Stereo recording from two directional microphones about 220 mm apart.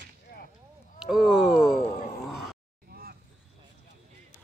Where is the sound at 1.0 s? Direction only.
Centre (ahead or behind).